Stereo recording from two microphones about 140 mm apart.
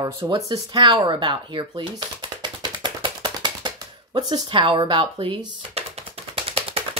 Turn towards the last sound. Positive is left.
turn(degrees=-45)  # may be behind; listen again after turning